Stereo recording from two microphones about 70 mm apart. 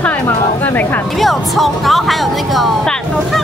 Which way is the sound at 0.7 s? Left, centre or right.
Left.